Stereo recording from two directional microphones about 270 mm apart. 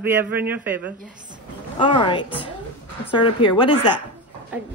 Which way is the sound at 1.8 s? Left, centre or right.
Centre.